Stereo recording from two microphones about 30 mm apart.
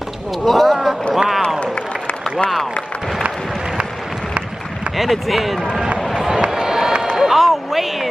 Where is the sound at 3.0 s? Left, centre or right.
Centre.